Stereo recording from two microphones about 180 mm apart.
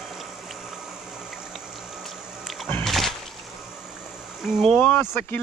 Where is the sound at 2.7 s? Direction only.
5° left (ahead or behind).